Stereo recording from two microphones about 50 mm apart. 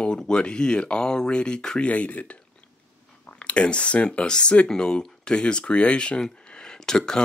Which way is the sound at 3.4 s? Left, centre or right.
Left.